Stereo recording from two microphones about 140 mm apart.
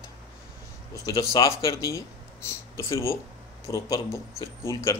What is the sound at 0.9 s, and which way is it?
Speech, 25° left (ahead or behind).